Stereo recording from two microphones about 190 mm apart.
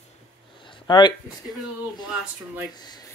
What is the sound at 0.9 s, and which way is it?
Speech, 20° left (ahead or behind).